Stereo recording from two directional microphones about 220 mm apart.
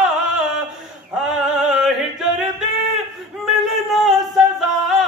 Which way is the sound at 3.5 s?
Centre (ahead or behind).